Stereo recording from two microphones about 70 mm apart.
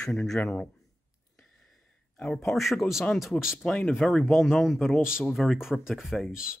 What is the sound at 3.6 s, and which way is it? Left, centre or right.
Speech, centre.